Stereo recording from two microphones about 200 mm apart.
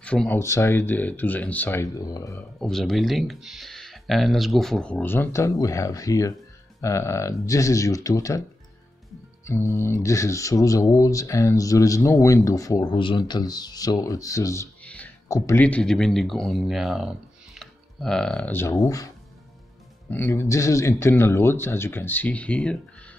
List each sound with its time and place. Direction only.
0.0 s speech: 5° left (ahead or behind)
2.6 s speech: centre (ahead or behind)
9.5 s speech: 15° left (ahead or behind)
20.1 s speech: 10° left (ahead or behind)